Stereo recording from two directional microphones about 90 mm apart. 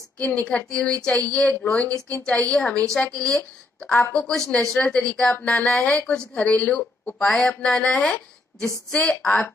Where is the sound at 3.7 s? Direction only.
10° left (ahead or behind).